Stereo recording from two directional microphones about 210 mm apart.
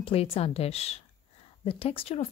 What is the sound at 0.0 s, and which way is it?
Speech, 25° left (ahead or behind).